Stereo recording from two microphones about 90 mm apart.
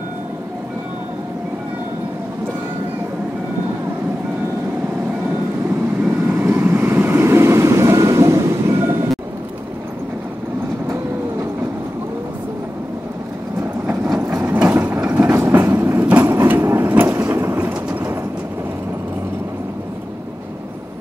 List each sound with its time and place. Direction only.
6.0 s vehicle: 25° right (ahead or behind)
14.4 s mechanisms: 25° right (ahead or behind)
15.0 s vehicle: 20° right (ahead or behind)
16.1 s a sound: 20° right (ahead or behind)